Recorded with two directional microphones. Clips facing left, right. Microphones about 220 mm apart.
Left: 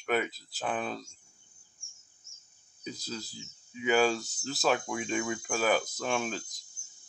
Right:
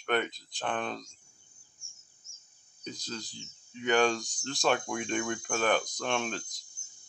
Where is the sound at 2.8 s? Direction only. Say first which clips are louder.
Left 1 dB; 5° left (ahead or behind).